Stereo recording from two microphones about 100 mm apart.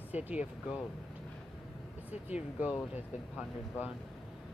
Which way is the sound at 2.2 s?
15° right (ahead or behind).